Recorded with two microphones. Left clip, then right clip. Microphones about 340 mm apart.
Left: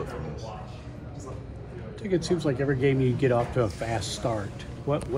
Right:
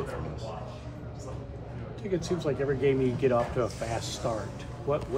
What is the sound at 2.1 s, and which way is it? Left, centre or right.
Speech, left.